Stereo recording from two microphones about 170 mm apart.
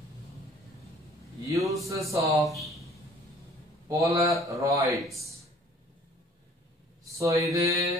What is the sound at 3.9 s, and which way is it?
Speech, 20° right (ahead or behind).